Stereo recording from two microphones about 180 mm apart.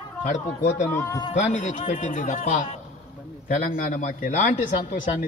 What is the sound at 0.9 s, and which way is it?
Speech, 15° left (ahead or behind).